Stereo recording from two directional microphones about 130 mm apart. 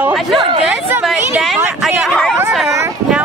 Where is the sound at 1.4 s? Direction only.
Centre (ahead or behind).